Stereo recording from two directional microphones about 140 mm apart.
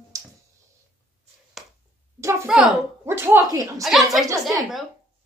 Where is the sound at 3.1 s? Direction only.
15° right (ahead or behind).